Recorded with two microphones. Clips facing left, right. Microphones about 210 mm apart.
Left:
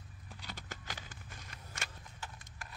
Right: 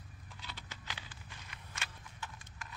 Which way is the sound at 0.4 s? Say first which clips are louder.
Left 3 dB; 45° left (ahead or behind).